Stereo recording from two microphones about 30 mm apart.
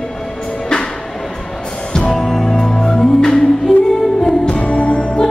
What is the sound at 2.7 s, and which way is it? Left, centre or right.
Music, left.